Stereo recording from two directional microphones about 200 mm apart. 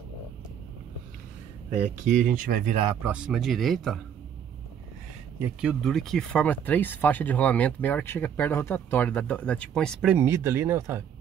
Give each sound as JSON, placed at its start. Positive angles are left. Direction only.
{"t": 2.0, "sound": "speech", "side_deg": -40}
{"t": 2.9, "sound": "speech", "side_deg": -10}
{"t": 5.4, "sound": "speech", "side_deg": -5}
{"t": 10.1, "sound": "speech", "side_deg": -10}